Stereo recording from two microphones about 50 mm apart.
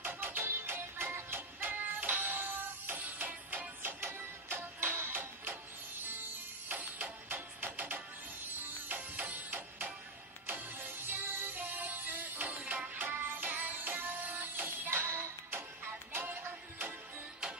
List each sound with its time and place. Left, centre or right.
0.0 s music: right
0.4 s music: right
0.7 s music: right
4.0 s music: right
6.7 s music: right
9.1 s music: right
13.2 s music: right
13.5 s music: right